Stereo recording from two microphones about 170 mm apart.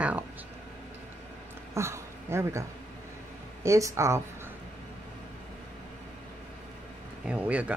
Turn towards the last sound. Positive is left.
turn(degrees=-10)  # may be behind; listen again after turning